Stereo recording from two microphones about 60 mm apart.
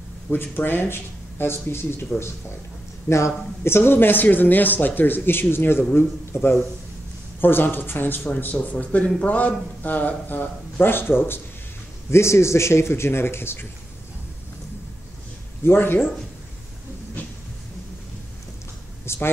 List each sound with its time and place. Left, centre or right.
0.3 s a man's voice: left
3.1 s a man's voice: left
3.6 s a man's voice: left
12.1 s a man's voice: left
15.6 s a man's voice: left
19.0 s speech: left